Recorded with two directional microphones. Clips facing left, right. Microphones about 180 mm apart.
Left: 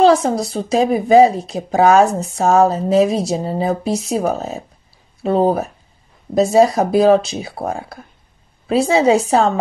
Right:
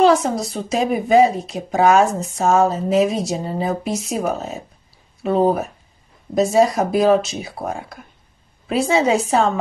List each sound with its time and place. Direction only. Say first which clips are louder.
0.0 s speech: left 2 dB; 30° left (ahead or behind)